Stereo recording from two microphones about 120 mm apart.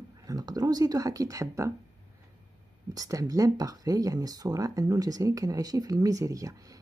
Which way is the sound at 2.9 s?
30° right (ahead or behind).